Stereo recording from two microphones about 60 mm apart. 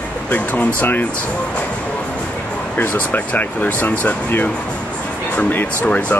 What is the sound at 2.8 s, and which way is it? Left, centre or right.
Speech, left.